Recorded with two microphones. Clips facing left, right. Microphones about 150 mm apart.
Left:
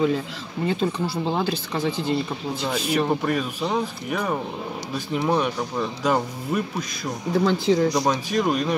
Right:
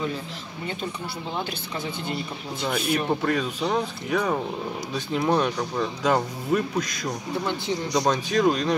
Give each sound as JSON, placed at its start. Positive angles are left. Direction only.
{"t": 1.3, "sound": "speech", "side_deg": 90}
{"t": 2.9, "sound": "speech", "side_deg": 5}
{"t": 7.4, "sound": "speech", "side_deg": 90}
{"t": 7.9, "sound": "speech", "side_deg": 5}